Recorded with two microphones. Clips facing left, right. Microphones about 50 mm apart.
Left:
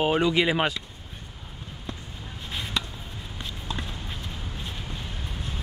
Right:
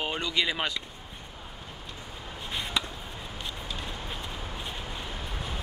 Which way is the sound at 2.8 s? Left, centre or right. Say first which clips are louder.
Even; centre.